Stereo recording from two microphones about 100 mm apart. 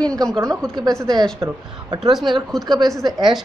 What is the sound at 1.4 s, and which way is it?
A woman's voice, 45° right (ahead or behind).